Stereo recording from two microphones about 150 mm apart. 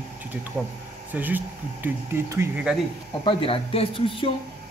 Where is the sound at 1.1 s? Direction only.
10° right (ahead or behind).